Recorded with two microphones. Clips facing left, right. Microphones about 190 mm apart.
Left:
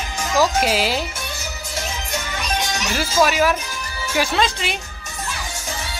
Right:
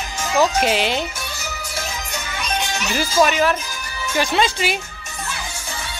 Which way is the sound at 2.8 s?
Centre (ahead or behind).